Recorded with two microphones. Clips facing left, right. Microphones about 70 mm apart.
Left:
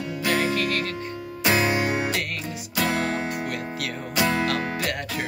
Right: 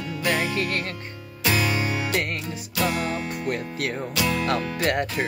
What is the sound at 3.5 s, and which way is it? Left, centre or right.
Music, right.